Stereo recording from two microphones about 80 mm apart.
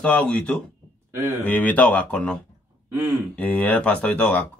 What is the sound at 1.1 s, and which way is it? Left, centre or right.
Speech, right.